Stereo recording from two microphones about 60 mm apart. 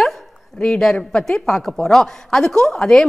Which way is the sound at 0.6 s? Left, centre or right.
Centre.